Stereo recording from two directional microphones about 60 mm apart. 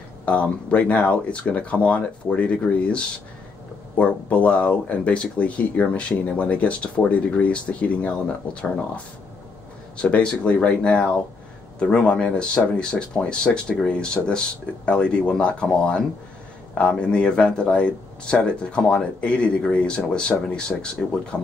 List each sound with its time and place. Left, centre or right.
0.2 s speech: left